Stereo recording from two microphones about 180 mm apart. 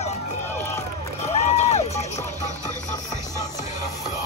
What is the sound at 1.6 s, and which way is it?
Music, 40° left (ahead or behind).